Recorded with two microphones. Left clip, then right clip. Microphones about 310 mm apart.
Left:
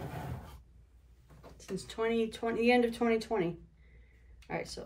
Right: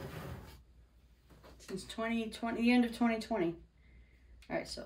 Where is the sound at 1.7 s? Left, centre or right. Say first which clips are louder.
Left 6 dB; centre.